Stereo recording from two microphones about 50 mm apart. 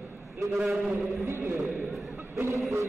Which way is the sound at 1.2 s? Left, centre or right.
Right.